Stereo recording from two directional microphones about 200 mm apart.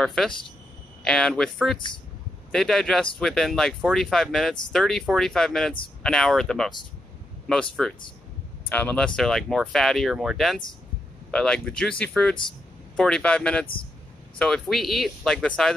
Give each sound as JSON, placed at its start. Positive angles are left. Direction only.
{"t": 0.0, "sound": "speech", "side_deg": 0}
{"t": 8.6, "sound": "speech", "side_deg": 5}